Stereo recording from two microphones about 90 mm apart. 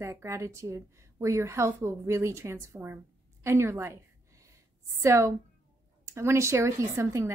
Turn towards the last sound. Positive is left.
turn(degrees=-30)  # may be behind; listen again after turning